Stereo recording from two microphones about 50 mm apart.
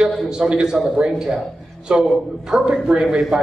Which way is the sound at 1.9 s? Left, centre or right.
Centre.